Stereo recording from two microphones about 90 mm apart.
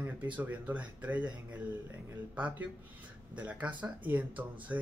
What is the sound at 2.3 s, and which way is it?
A man's voice, 15° right (ahead or behind).